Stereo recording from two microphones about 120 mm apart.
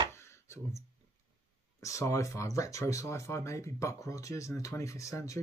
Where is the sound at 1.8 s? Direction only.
25° left (ahead or behind).